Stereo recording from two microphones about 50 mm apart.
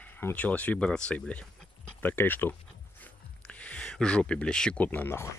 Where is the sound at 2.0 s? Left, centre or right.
Left.